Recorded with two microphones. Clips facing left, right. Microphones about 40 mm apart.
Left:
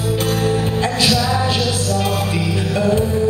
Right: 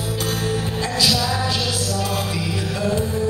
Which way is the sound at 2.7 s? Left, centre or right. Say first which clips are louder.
Left 6 dB; left.